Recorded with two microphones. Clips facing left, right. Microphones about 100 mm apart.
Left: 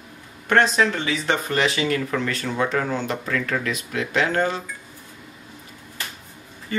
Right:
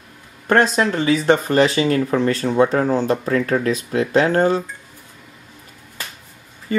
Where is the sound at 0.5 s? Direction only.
40° right (ahead or behind).